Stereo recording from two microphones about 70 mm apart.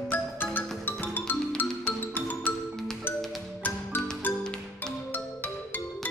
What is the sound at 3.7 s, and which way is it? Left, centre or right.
Music, left.